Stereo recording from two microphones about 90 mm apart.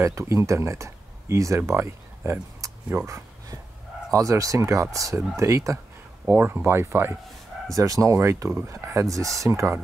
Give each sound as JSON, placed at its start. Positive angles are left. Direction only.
{"t": 0.0, "sound": "speech", "side_deg": -35}
{"t": 4.1, "sound": "speech", "side_deg": -40}
{"t": 6.2, "sound": "speech", "side_deg": -25}
{"t": 7.7, "sound": "speech", "side_deg": -40}